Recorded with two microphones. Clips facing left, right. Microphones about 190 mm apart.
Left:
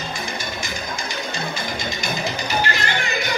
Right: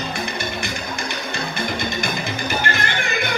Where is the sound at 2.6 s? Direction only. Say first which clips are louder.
Even; 50° right (ahead or behind).